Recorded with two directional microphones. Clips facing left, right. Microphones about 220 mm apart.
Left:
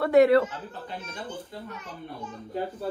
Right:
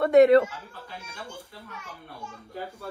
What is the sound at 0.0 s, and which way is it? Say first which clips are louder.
Speech: right 2 dB; 25° right (ahead or behind).